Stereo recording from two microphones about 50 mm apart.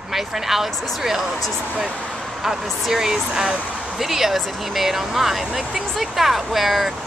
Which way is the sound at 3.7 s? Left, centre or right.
Centre.